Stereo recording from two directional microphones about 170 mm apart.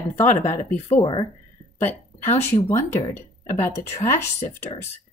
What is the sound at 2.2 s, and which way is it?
Speech, 40° left (ahead or behind).